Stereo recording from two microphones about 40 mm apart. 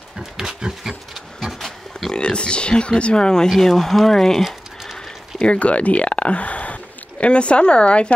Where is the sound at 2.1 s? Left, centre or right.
Left.